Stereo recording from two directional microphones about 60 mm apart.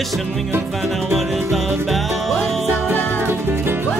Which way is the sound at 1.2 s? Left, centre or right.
Centre.